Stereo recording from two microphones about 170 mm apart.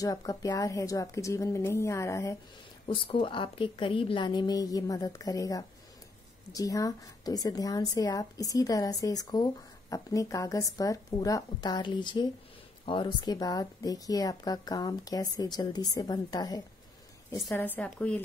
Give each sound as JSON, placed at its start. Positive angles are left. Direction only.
{"t": 0.0, "sound": "a woman's voice", "side_deg": 20}
{"t": 2.9, "sound": "a woman's voice", "side_deg": 30}